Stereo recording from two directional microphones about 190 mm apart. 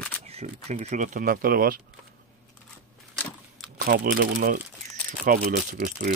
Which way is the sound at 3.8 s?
50° right (ahead or behind).